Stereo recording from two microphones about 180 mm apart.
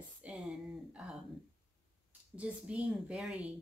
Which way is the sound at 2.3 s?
5° right (ahead or behind).